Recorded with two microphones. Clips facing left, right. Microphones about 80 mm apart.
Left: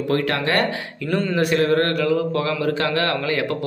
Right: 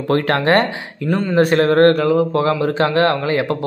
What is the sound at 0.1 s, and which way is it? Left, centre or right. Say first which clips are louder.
Speech: right 7 dB; right.